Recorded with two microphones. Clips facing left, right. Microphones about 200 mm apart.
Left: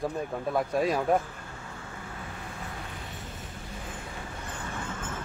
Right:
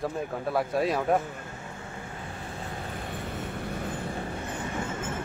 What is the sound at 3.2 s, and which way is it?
Vehicle, 60° right (ahead or behind).